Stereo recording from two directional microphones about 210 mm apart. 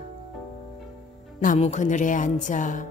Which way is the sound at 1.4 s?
35° left (ahead or behind).